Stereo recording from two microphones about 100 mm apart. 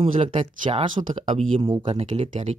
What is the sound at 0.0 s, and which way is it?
Speech, 80° right.